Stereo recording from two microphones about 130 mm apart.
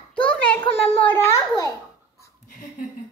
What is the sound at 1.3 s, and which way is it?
Speech, 25° left (ahead or behind).